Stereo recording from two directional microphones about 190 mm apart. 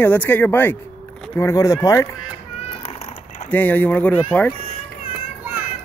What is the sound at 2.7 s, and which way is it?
Cat, 30° left (ahead or behind).